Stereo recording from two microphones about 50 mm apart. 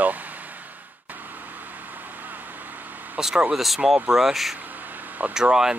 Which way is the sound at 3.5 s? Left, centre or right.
Centre.